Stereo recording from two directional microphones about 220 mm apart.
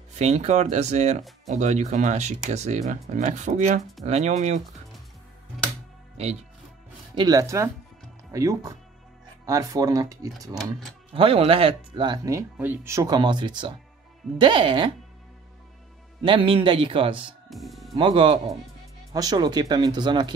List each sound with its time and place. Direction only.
0.1 s speech: 30° right (ahead or behind)
7.2 s speech: 15° right (ahead or behind)
16.3 s speech: 25° right (ahead or behind)
17.5 s speech: centre (ahead or behind)
17.9 s speech: 25° right (ahead or behind)